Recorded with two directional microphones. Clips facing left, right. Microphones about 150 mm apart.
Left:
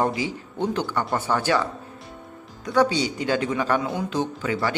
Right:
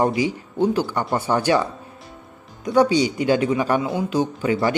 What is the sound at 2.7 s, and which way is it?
Speech, 10° right (ahead or behind).